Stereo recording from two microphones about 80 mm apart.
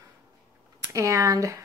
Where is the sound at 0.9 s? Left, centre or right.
Right.